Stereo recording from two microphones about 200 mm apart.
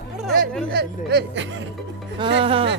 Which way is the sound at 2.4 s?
25° right (ahead or behind).